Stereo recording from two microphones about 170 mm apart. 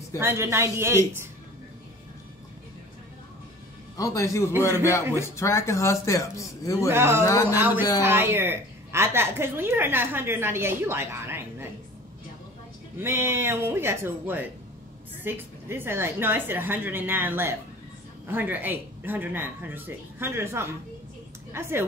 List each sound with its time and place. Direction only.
0.2 s a woman's voice: 15° right (ahead or behind)
3.9 s a man's voice: 20° left (ahead or behind)
5.0 s a woman's voice: 15° right (ahead or behind)
5.3 s a man's voice: 15° left (ahead or behind)
6.9 s a woman's voice: 15° right (ahead or behind)
13.0 s a woman's voice: 15° right (ahead or behind)